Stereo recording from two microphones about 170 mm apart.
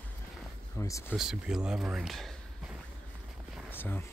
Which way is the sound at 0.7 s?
20° left (ahead or behind).